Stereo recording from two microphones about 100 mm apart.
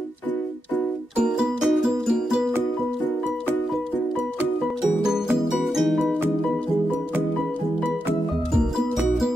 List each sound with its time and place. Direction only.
1.2 s music: 5° right (ahead or behind)
5.5 s music: centre (ahead or behind)
8.9 s music: centre (ahead or behind)